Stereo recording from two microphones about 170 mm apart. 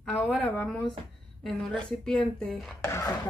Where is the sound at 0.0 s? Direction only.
Centre (ahead or behind).